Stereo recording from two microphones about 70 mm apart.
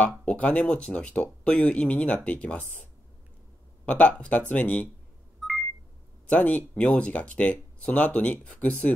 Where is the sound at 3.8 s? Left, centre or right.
Left.